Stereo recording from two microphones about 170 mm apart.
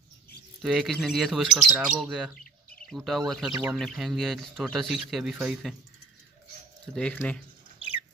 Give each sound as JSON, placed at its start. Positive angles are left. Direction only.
{"t": 0.6, "sound": "speech", "side_deg": 0}
{"t": 6.9, "sound": "speech", "side_deg": 5}